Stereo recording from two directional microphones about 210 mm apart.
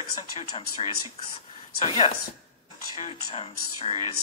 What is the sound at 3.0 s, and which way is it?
A woman's voice, 25° left (ahead or behind).